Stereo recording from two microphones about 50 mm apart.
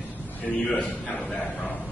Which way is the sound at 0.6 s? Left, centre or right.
Centre.